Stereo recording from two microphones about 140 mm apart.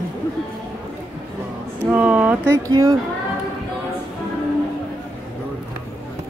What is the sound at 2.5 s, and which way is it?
Speech, 25° right (ahead or behind).